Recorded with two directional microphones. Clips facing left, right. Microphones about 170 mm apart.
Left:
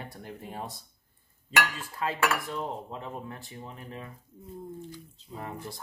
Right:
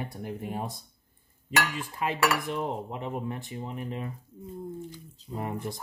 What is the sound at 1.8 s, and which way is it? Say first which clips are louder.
Dishes: right 2 dB; 15° right (ahead or behind).